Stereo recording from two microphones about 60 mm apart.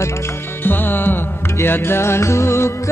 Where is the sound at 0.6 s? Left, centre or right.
Left.